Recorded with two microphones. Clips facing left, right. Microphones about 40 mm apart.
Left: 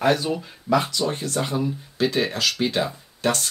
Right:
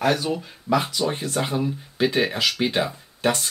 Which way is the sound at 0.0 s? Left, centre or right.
Centre.